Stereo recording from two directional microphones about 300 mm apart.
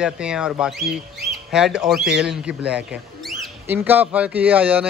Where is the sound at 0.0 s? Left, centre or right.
Centre.